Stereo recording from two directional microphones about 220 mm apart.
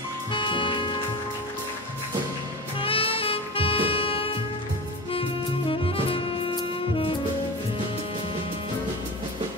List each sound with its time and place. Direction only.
0.3 s music: 20° left (ahead or behind)
2.8 s music: 25° left (ahead or behind)
5.7 s music: 25° left (ahead or behind)